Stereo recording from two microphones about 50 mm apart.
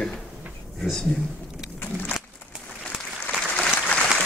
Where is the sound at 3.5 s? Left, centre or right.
Left.